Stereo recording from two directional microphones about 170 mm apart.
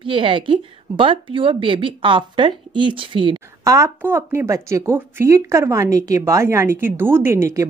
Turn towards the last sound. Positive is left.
turn(degrees=-15)  # may be behind; listen again after turning